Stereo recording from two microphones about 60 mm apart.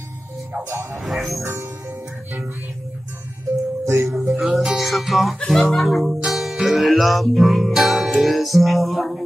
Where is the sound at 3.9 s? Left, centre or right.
Right.